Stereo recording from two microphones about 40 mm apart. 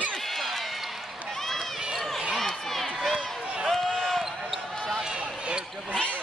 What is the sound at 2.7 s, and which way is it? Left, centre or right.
Crowd, centre.